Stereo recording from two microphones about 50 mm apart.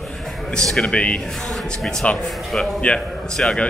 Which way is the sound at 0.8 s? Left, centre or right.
Left.